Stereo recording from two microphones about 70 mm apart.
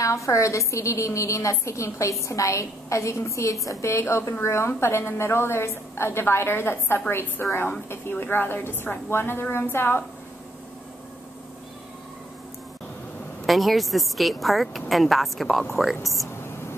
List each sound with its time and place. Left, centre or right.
0.0 s a woman's voice: left
13.5 s speech: centre